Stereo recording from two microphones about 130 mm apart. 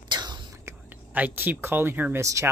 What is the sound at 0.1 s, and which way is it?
Whispering, 35° right (ahead or behind).